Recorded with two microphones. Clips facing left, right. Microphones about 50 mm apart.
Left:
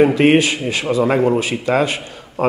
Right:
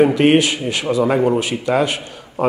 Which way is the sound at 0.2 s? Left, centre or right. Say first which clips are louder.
Even; left.